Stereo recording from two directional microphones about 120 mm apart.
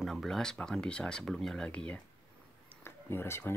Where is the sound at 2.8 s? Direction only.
20° left (ahead or behind).